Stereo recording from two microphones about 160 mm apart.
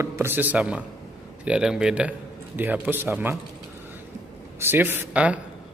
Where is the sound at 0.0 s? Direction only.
15° right (ahead or behind).